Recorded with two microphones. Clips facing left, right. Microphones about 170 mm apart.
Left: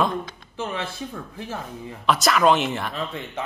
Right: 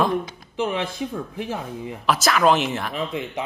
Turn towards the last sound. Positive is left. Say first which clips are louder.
# right 3 dB
turn(degrees=-15)  # may be behind; listen again after turning